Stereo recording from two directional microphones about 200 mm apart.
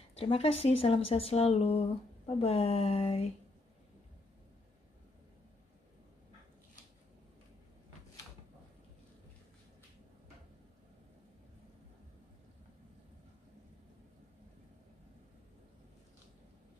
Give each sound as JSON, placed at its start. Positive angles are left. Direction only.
{"t": 0.1, "sound": "a woman's voice", "side_deg": 30}